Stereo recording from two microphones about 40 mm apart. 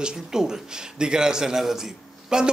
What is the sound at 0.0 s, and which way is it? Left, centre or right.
A man's voice, centre.